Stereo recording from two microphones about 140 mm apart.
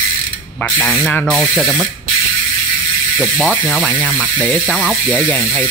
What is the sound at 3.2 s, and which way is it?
Speech, 10° right (ahead or behind).